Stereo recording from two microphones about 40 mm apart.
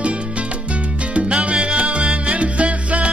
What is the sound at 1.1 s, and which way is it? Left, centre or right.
Salsa music, right.